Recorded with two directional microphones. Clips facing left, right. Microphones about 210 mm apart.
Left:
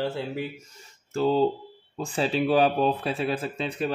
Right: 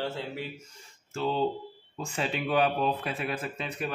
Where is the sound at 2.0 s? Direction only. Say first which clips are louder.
Left 7 dB; 35° left (ahead or behind).